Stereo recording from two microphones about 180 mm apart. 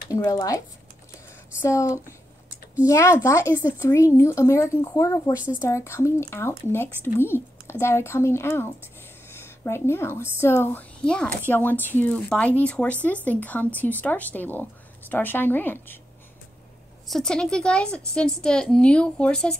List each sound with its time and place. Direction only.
0.1 s speech: 20° left (ahead or behind)
1.6 s a woman's voice: 15° left (ahead or behind)
17.1 s a woman's voice: 5° left (ahead or behind)